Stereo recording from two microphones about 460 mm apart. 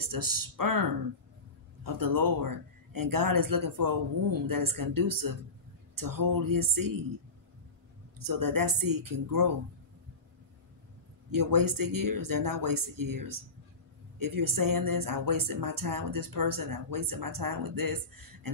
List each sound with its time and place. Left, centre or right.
0.0 s speech: right
8.2 s speech: right
11.3 s speech: right